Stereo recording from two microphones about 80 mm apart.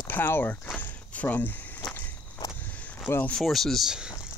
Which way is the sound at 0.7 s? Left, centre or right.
Left.